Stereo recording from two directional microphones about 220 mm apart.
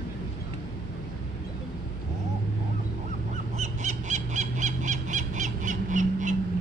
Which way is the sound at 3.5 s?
30° right (ahead or behind).